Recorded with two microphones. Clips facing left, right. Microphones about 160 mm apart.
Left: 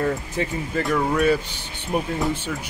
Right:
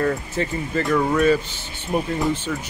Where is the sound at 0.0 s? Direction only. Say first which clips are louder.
Right 1 dB; 10° left (ahead or behind).